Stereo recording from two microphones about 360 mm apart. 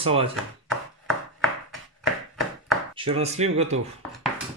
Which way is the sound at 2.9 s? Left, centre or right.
Centre.